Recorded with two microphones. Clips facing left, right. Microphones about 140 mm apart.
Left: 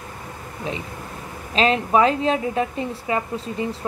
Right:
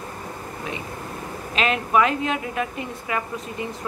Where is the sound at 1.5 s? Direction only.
30° left (ahead or behind).